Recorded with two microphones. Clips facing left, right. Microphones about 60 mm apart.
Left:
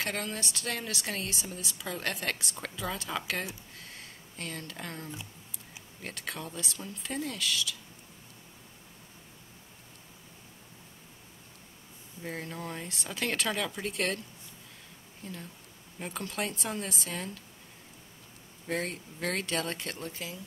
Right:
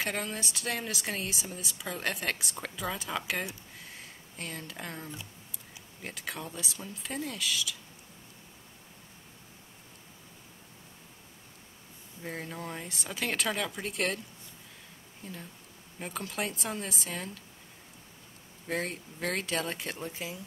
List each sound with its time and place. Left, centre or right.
0.0 s speech: centre
3.7 s a sound: centre
6.0 s speech: centre
12.2 s speech: centre
15.2 s speech: centre
18.7 s speech: centre